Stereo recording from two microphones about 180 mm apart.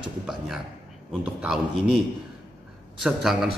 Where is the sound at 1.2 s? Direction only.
5° right (ahead or behind).